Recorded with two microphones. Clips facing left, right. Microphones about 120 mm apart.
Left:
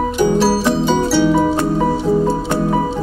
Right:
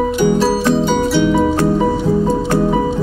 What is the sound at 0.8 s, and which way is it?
Music, centre (ahead or behind).